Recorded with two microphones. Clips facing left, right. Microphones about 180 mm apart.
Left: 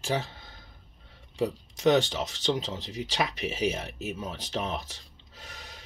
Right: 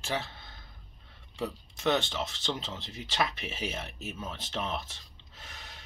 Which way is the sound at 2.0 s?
15° left (ahead or behind).